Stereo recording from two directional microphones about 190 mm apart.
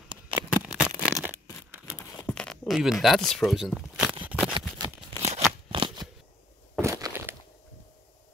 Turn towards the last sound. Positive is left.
turn(degrees=-15)  # may be behind; listen again after turning